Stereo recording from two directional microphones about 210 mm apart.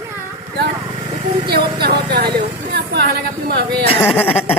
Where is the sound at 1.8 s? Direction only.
50° right (ahead or behind).